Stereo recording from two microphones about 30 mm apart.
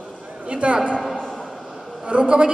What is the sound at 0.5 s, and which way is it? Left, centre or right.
Speech, right.